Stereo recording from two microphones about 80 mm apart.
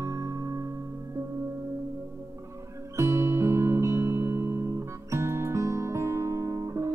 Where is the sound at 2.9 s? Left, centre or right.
Right.